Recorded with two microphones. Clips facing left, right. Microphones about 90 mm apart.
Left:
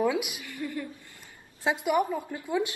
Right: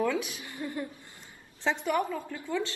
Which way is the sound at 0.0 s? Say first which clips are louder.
Left 2 dB; 15° left (ahead or behind).